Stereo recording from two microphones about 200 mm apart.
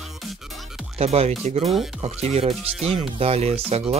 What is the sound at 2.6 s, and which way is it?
Speech, 5° right (ahead or behind).